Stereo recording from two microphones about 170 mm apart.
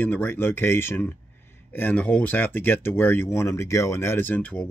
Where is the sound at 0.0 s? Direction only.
10° left (ahead or behind).